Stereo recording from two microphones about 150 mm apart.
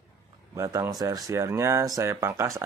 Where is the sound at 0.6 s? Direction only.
20° right (ahead or behind).